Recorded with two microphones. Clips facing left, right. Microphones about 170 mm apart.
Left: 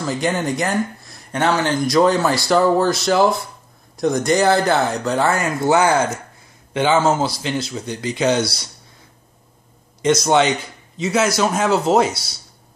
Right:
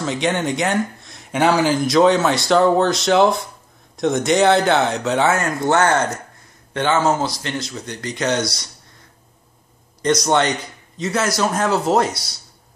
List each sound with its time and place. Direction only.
0.0 s speech: centre (ahead or behind)
1.4 s speech: 10° right (ahead or behind); by 8.5 s 5° left (ahead or behind)
10.0 s speech: 5° left (ahead or behind)